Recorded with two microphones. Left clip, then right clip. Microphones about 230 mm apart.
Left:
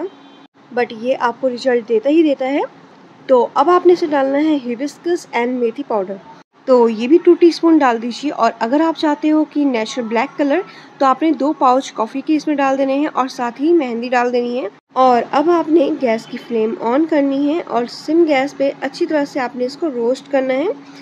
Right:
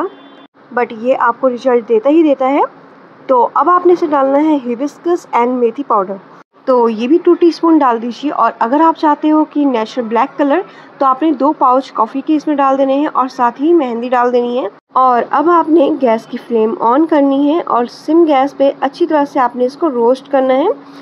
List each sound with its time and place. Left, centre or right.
0.7 s a woman's voice: centre
15.3 s a woman's voice: centre